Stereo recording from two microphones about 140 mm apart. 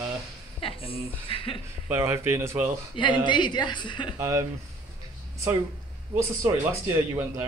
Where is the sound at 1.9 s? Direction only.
20° right (ahead or behind).